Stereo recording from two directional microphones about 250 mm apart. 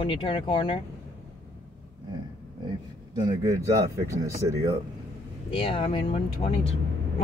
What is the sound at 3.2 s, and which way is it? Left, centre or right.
Speech, centre.